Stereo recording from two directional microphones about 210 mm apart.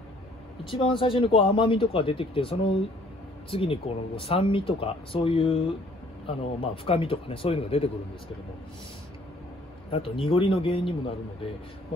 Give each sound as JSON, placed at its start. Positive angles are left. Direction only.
{"t": 0.7, "sound": "speech", "side_deg": 25}
{"t": 9.8, "sound": "speech", "side_deg": 25}